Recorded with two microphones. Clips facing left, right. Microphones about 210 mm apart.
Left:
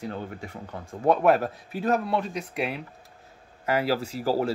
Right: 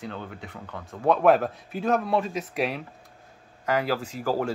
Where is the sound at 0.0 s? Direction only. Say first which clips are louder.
Left 2 dB; 40° left (ahead or behind).